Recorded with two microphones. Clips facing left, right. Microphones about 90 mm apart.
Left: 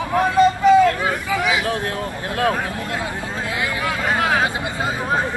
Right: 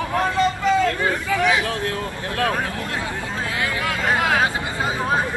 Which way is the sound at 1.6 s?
20° left (ahead or behind).